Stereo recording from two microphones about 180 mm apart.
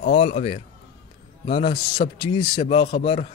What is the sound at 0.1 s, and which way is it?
Speech, 35° left (ahead or behind).